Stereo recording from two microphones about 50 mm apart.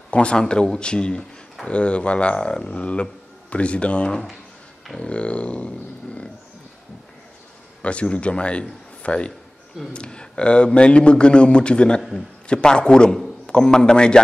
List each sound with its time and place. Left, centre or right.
0.1 s speech: left
7.8 s a man's voice: left